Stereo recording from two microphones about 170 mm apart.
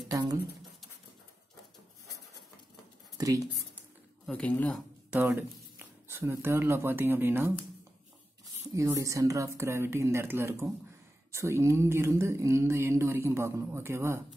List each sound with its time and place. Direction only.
0.1 s speech: 20° right (ahead or behind)
3.2 s speech: 20° right (ahead or behind)
4.3 s speech: 10° left (ahead or behind)
5.1 s speech: 10° right (ahead or behind)
8.7 s speech: 20° right (ahead or behind)